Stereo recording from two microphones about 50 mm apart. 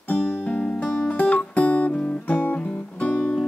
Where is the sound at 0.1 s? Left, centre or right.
Left.